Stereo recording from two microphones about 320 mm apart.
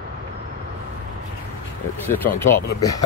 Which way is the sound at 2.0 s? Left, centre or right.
Centre.